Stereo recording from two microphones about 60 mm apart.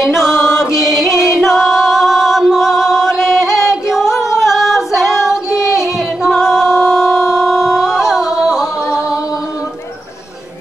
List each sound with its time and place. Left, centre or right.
0.0 s music: centre
0.4 s music: left
1.4 s singing: centre
2.5 s music: centre
3.5 s singing: left
4.4 s singing: centre